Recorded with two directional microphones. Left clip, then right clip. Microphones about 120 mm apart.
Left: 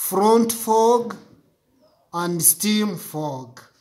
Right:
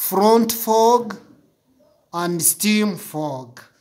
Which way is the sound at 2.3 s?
15° right (ahead or behind).